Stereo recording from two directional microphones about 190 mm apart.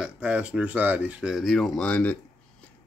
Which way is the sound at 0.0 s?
5° right (ahead or behind).